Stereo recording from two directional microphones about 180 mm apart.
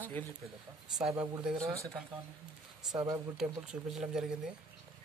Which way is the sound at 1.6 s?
15° right (ahead or behind).